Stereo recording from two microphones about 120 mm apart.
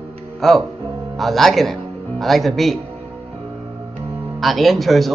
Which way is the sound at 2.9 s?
50° right (ahead or behind).